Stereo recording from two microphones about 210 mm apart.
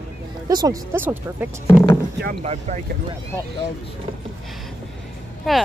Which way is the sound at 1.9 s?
55° right (ahead or behind).